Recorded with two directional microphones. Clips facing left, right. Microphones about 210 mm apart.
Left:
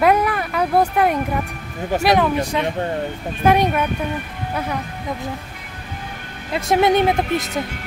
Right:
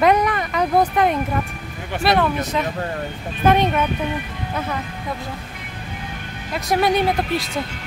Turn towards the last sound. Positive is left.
turn(degrees=20)  # may be behind; listen again after turning